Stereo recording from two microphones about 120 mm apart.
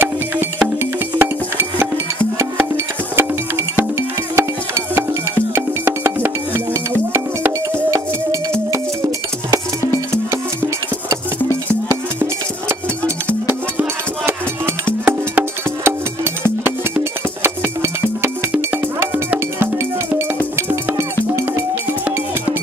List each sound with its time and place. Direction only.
1.1 s music: 20° right (ahead or behind)
3.2 s music: 20° right (ahead or behind)
11.9 s music: 20° right (ahead or behind)